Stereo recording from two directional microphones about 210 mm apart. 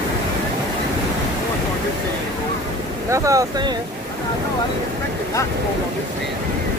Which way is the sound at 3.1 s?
15° right (ahead or behind).